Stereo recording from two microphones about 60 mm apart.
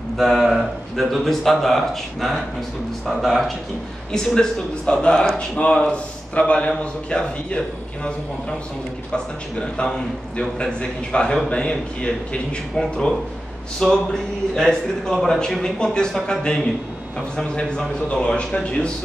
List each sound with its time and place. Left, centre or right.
0.2 s a man's voice: centre
4.1 s a man's voice: centre